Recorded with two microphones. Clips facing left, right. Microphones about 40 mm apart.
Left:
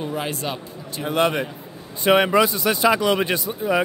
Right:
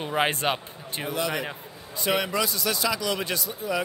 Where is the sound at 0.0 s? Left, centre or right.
Right.